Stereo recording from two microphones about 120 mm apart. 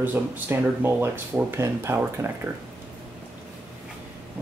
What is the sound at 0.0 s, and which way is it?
Speech, 15° right (ahead or behind).